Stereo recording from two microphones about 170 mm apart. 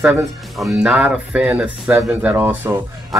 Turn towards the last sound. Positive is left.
turn(degrees=-15)  # may be behind; listen again after turning